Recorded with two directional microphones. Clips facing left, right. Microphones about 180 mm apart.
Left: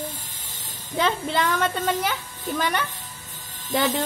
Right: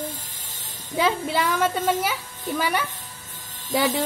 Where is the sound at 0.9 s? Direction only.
10° right (ahead or behind).